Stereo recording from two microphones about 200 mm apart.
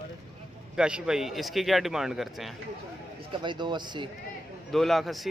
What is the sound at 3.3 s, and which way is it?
Speech, 25° right (ahead or behind).